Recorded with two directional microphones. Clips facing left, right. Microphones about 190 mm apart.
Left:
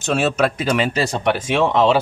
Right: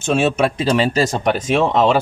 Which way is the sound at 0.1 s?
25° right (ahead or behind).